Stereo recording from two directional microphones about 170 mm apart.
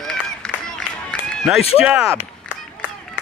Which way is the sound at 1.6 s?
35° left (ahead or behind).